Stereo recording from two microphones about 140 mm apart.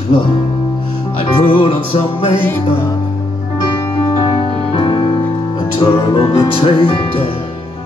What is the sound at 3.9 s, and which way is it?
Music, 40° left (ahead or behind).